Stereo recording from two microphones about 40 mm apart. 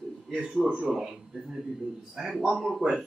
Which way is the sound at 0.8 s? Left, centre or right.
Centre.